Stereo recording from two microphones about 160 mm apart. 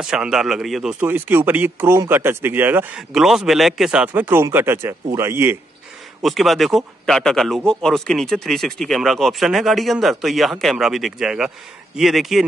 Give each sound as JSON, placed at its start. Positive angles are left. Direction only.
{"t": 0.0, "sound": "speech", "side_deg": -5}
{"t": 1.0, "sound": "speech", "side_deg": -10}
{"t": 6.2, "sound": "speech", "side_deg": 0}